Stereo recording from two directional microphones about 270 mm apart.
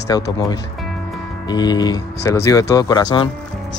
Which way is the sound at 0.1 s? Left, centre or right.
Centre.